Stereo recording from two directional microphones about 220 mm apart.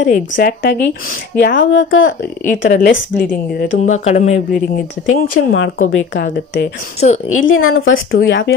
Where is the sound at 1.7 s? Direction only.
60° left (ahead or behind).